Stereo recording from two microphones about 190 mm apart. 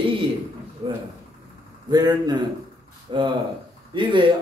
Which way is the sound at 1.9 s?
20° right (ahead or behind).